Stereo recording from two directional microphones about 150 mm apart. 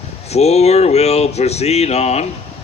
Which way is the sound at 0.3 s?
45° left (ahead or behind).